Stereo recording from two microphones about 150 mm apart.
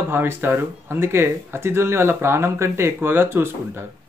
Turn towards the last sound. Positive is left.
turn(degrees=-15)  # may be behind; listen again after turning